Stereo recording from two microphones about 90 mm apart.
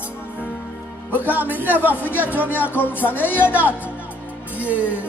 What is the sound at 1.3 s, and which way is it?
Music, 20° right (ahead or behind).